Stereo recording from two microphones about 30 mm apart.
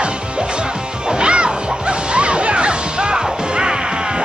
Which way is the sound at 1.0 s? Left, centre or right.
Right.